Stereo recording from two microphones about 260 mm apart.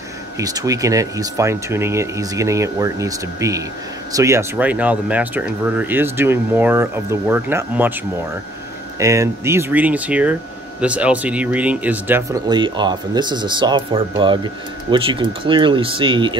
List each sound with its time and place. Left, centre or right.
0.4 s speech: centre
9.0 s speech: centre